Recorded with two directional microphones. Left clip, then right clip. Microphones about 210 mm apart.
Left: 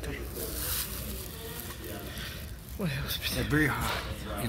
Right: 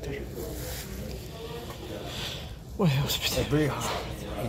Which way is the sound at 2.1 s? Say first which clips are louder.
Right 5 dB; 20° right (ahead or behind).